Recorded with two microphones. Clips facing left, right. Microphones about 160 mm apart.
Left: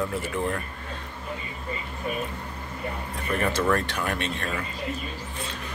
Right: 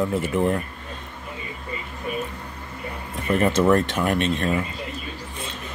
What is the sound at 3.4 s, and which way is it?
A man's voice, 20° right (ahead or behind).